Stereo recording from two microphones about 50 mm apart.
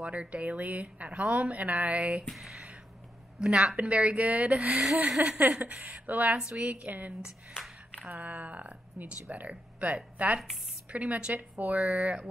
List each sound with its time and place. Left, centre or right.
0.0 s a woman's voice: right
3.3 s a woman's voice: right
7.2 s speech: centre
8.1 s a woman's voice: right